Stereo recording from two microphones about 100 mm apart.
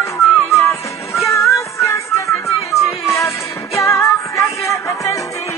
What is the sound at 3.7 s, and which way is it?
Music, 30° left (ahead or behind).